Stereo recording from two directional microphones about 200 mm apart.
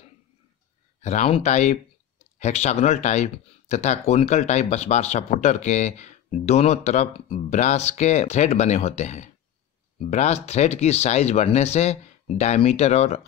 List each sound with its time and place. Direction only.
1.0 s speech: 30° left (ahead or behind)